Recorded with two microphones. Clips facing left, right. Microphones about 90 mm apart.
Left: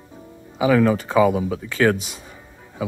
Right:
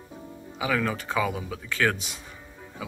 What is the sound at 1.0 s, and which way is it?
Speech, 10° left (ahead or behind).